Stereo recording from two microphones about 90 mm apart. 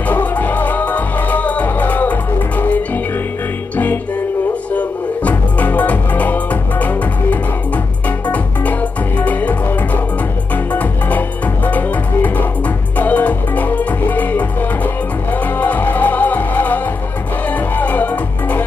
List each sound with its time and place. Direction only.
0.1 s music: 20° left (ahead or behind)
3.7 s music: 20° left (ahead or behind)
9.2 s music: 15° left (ahead or behind)